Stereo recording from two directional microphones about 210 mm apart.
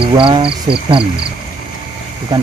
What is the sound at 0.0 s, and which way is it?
Speech, 25° right (ahead or behind).